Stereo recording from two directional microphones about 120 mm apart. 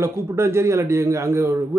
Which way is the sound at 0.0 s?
20° right (ahead or behind).